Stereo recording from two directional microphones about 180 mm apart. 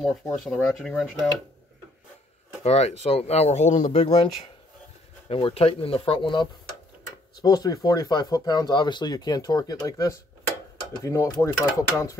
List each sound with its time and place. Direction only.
0.3 s speech: centre (ahead or behind)
2.6 s speech: 35° left (ahead or behind)
5.3 s speech: 30° left (ahead or behind); by 12.2 s 15° left (ahead or behind)